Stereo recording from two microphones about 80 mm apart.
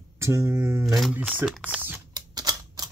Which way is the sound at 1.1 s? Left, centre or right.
Right.